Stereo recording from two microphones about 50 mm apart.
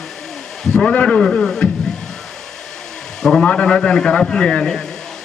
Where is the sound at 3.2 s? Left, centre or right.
Centre.